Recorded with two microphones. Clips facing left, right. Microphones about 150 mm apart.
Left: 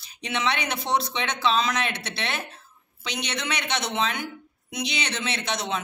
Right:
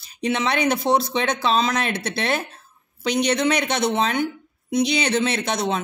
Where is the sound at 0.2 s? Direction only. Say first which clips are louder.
Right 6 dB; 40° right (ahead or behind).